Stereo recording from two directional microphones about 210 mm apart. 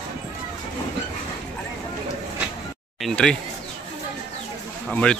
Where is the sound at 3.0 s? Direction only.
5° left (ahead or behind).